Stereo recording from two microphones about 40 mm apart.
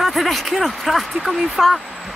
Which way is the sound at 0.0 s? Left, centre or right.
Centre.